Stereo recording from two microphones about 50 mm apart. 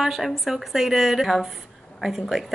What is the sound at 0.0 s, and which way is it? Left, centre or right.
A woman's voice, centre.